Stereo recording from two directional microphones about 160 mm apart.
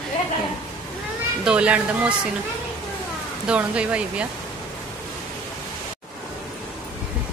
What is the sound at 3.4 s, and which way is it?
Speech, 5° right (ahead or behind).